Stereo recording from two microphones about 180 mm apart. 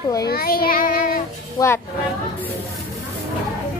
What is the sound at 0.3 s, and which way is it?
Child singing, 55° left (ahead or behind).